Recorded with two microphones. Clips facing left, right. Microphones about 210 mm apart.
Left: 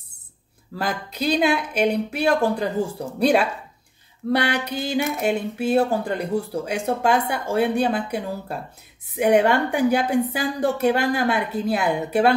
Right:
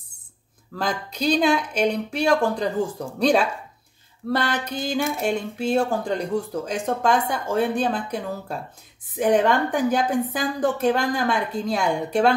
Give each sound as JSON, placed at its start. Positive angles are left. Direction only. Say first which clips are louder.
{"t": 0.7, "sound": "speech", "louder": "even", "side_deg": 5}